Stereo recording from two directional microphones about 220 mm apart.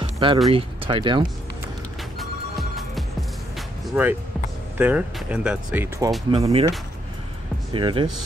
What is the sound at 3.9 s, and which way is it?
Speech, 5° right (ahead or behind).